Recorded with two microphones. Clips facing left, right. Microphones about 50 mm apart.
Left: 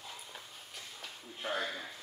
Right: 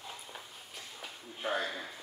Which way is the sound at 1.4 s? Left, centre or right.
Centre.